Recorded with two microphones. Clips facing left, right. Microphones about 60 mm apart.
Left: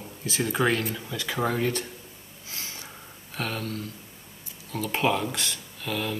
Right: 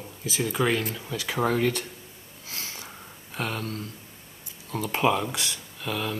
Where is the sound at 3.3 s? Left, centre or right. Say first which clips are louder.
Even; right.